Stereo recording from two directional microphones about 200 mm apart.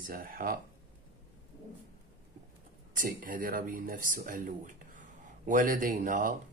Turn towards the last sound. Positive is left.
turn(degrees=-40)  # may be behind; listen again after turning